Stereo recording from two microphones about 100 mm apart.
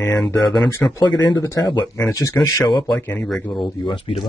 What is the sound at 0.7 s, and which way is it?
Speech, 25° left (ahead or behind).